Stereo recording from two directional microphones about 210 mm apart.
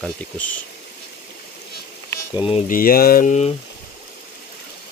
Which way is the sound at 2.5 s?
30° left (ahead or behind).